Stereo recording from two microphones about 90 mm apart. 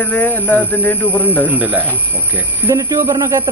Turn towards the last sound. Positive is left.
turn(degrees=-25)  # may be behind; listen again after turning